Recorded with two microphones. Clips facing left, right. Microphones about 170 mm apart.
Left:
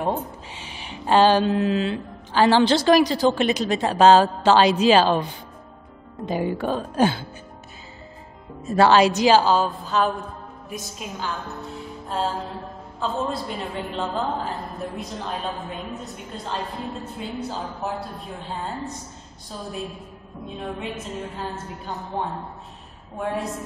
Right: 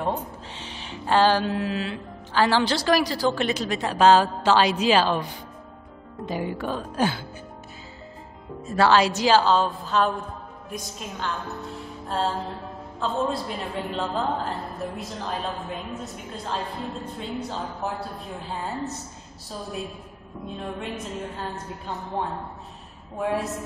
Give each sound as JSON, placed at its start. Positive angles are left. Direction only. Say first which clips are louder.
{"t": 0.0, "sound": "speech", "louder": "left 2 dB", "side_deg": 10}
{"t": 8.7, "sound": "a woman's voice", "louder": "left 3 dB", "side_deg": 20}
{"t": 20.4, "sound": "a woman's voice", "louder": "left 1 dB", "side_deg": 0}